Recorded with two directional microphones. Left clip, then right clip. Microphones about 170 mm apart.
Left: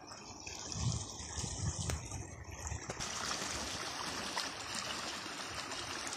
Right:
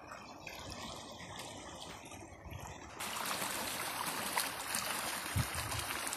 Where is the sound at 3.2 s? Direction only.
25° right (ahead or behind).